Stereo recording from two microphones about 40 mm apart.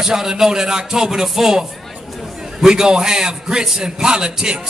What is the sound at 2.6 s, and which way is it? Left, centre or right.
A man's voice, centre.